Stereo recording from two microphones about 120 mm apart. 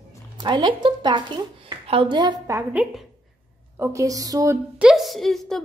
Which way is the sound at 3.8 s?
25° right (ahead or behind).